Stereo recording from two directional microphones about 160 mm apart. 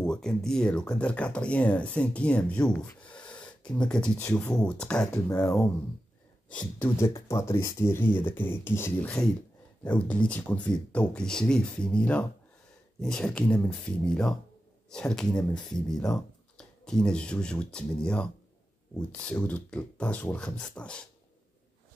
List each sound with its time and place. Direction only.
0.0 s speech: 5° left (ahead or behind)
5.1 s speech: 20° left (ahead or behind)
6.5 s speech: 10° left (ahead or behind)